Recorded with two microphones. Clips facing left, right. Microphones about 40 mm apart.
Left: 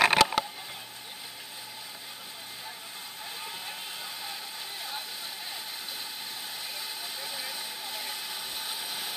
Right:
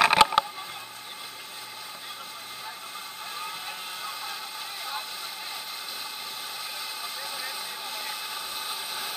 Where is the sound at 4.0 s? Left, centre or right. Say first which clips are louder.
Right 4 dB; right.